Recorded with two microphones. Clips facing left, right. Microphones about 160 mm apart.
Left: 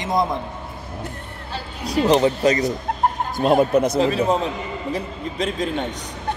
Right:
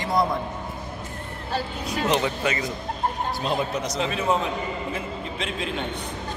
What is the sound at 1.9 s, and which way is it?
Speech, 35° left (ahead or behind).